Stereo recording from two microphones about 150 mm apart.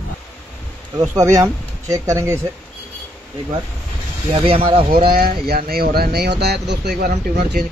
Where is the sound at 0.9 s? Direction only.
20° right (ahead or behind).